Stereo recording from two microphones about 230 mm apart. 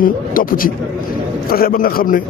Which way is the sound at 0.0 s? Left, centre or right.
Left.